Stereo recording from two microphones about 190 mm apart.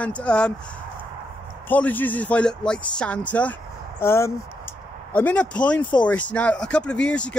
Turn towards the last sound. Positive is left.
turn(degrees=5)  # may be behind; listen again after turning